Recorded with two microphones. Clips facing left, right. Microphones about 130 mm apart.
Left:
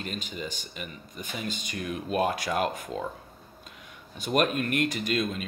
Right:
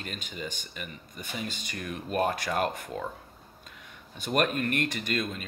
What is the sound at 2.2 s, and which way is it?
Speech, 50° right (ahead or behind).